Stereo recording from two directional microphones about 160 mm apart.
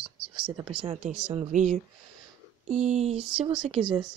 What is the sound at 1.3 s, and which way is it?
A woman's voice, 45° right (ahead or behind).